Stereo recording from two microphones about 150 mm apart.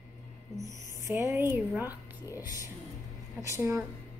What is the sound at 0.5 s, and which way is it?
Speech, 20° right (ahead or behind).